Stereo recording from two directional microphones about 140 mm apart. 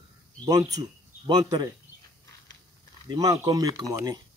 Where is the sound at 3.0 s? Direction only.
25° right (ahead or behind).